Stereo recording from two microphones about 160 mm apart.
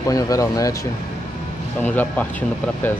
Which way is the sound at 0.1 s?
20° left (ahead or behind).